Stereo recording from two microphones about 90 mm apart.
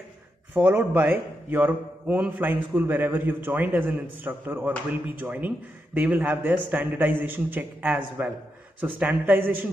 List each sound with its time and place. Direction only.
0.6 s a man's voice: 20° right (ahead or behind)